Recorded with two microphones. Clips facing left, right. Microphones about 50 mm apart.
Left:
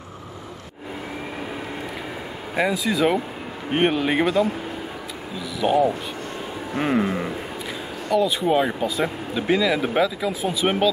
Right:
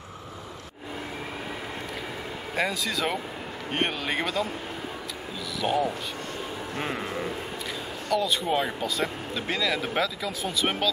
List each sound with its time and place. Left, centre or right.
2.5 s speech: centre
5.6 s speech: centre